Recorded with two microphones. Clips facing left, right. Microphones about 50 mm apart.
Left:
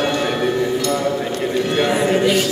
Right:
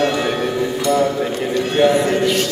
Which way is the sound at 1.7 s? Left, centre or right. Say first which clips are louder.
Right 4 dB; centre.